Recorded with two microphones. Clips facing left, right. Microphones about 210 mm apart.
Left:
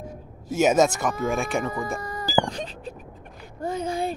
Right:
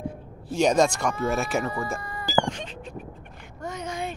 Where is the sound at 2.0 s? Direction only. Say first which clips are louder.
Left 2 dB; 40° left (ahead or behind).